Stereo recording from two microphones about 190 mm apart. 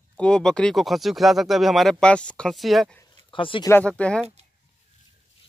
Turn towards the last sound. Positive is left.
turn(degrees=5)  # may be behind; listen again after turning